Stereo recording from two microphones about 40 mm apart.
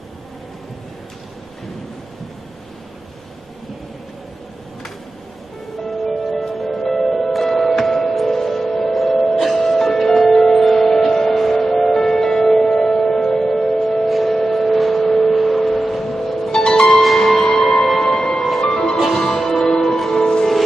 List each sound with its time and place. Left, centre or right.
5.9 s music: centre
15.9 s wind chime: centre
16.5 s pizzicato: centre
17.0 s music: centre
18.7 s music: left
19.1 s music: centre